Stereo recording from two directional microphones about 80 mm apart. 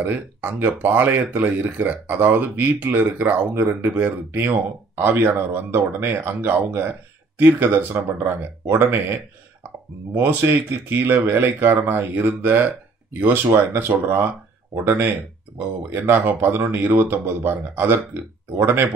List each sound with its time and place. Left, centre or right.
0.0 s speech: right